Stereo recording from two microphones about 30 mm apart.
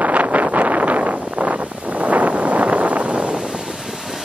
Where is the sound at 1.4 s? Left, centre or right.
Right.